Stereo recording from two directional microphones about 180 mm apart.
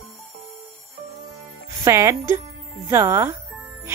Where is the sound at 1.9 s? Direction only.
15° right (ahead or behind).